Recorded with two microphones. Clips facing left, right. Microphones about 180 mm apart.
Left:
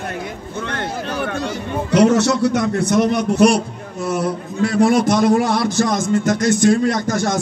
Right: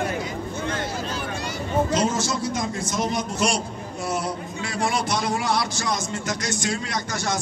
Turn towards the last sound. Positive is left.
turn(degrees=55)  # may be behind; listen again after turning